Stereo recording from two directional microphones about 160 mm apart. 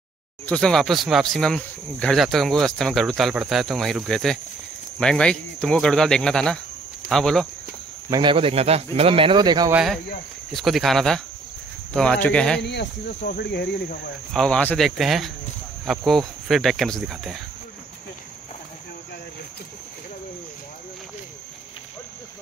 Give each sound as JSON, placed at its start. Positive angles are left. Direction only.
{"t": 0.5, "sound": "speech", "side_deg": 5}
{"t": 8.1, "sound": "speech", "side_deg": -30}
{"t": 10.5, "sound": "speech", "side_deg": 0}
{"t": 12.6, "sound": "speech", "side_deg": 80}
{"t": 14.3, "sound": "speech", "side_deg": 5}